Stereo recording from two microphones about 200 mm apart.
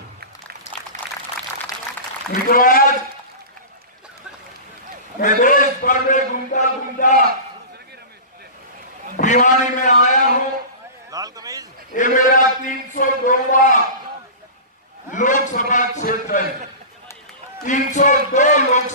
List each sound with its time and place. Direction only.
2.5 s a man's voice: 45° left (ahead or behind)
5.2 s a man's voice: 40° left (ahead or behind)
9.1 s a sound: 35° left (ahead or behind)
11.1 s a sound: 20° right (ahead or behind)
11.9 s a man's voice: 40° left (ahead or behind)
15.0 s a man's voice: 40° left (ahead or behind)
17.6 s a man's voice: 40° left (ahead or behind)